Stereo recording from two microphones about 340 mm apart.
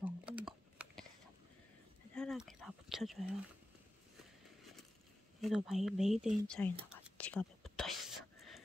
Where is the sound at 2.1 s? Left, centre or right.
Centre.